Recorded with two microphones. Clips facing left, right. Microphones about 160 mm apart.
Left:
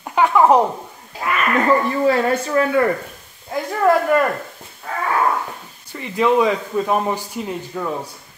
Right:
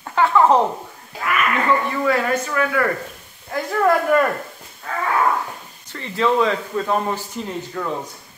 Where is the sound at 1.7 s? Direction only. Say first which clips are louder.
Left 4 dB; 35° left (ahead or behind).